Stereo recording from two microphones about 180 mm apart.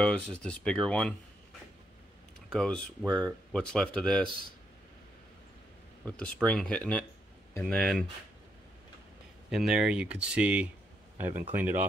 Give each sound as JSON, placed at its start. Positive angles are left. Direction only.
{"t": 0.0, "sound": "speech", "side_deg": 5}
{"t": 2.5, "sound": "speech", "side_deg": 5}
{"t": 6.0, "sound": "speech", "side_deg": 5}
{"t": 9.5, "sound": "speech", "side_deg": -5}